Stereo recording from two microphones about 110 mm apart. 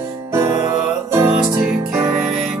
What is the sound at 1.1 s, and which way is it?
Music, 20° right (ahead or behind).